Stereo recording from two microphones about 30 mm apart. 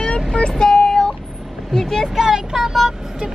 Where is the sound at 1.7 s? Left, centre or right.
Left.